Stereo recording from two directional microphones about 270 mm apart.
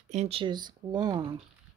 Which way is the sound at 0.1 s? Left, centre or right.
Right.